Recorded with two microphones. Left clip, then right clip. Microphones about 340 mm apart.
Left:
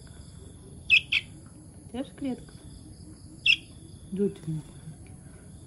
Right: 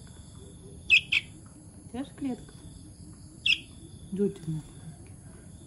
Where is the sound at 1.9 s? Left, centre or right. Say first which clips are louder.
Left 1 dB; centre.